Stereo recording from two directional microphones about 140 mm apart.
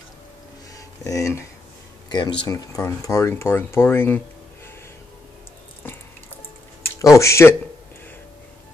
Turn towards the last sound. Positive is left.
turn(degrees=20)  # may be behind; listen again after turning